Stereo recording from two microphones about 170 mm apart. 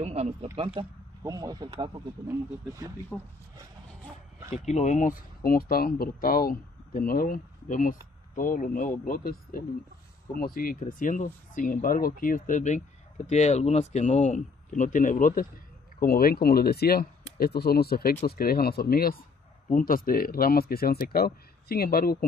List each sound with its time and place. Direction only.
0.0 s speech: 40° right (ahead or behind)
1.2 s speech: 20° right (ahead or behind)
3.1 s speech: 10° left (ahead or behind)
4.6 s speech: 45° left (ahead or behind); by 22.2 s 60° left (ahead or behind)